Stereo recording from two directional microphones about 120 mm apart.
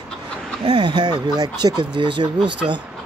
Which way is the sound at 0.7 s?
40° right (ahead or behind).